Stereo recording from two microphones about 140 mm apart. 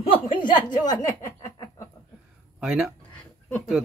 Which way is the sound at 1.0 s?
25° left (ahead or behind).